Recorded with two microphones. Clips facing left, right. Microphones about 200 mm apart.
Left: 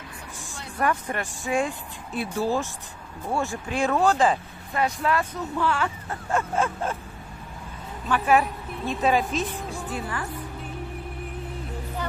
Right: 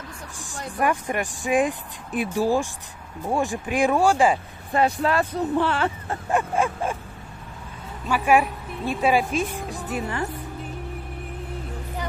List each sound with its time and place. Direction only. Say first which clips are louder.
0.7 s a woman's voice: right 2 dB; 15° right (ahead or behind)
4.7 s speech: right 4 dB; 30° right (ahead or behind)
6.3 s a woman's voice: right 2 dB; 15° right (ahead or behind)
8.1 s a woman's voice: right 2 dB; 10° right (ahead or behind)